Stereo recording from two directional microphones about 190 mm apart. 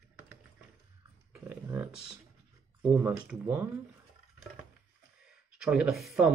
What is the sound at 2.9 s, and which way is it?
Speech, 10° right (ahead or behind).